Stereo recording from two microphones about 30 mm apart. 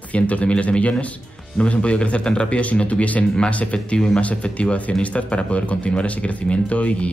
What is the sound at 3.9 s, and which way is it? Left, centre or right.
Speech, left.